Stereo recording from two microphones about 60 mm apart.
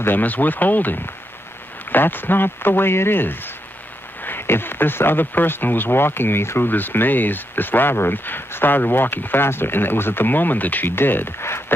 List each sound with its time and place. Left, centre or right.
0.0 s speech: left